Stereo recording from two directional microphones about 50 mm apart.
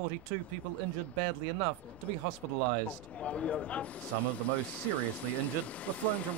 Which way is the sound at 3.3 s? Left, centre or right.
Left.